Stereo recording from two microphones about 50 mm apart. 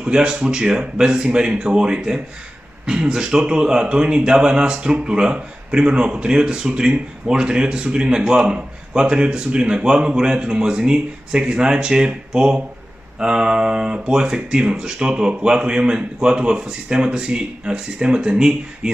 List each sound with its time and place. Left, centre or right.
0.0 s speech: centre